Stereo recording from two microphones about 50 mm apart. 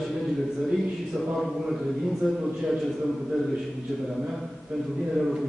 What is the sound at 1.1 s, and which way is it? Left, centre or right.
Mantra, right.